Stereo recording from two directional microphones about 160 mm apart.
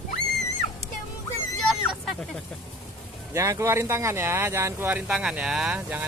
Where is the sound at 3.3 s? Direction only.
20° right (ahead or behind).